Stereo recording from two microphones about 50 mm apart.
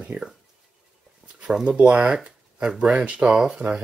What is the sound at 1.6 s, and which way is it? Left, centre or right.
Speech, right.